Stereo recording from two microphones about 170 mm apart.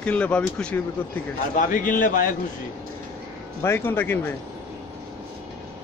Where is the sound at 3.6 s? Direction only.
15° left (ahead or behind).